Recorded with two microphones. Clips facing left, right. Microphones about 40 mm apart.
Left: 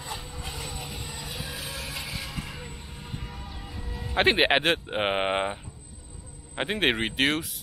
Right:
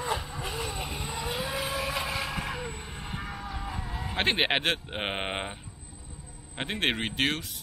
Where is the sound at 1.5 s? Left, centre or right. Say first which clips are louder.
Right 6 dB; centre.